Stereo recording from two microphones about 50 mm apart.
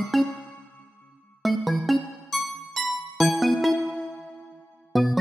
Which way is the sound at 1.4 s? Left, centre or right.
Centre.